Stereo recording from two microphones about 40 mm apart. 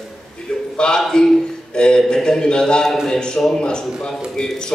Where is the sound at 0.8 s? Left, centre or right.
Left.